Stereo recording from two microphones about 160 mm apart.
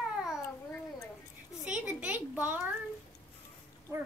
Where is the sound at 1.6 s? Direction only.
5° right (ahead or behind).